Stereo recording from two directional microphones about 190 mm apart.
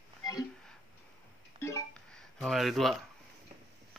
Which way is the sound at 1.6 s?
15° left (ahead or behind).